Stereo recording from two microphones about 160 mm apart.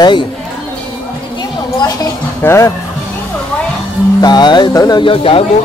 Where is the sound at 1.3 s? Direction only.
25° left (ahead or behind).